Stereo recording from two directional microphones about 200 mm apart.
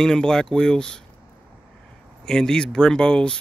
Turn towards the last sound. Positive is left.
turn(degrees=5)  # may be behind; listen again after turning